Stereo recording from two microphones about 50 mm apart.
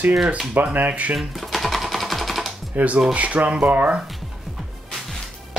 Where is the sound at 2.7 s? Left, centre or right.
Right.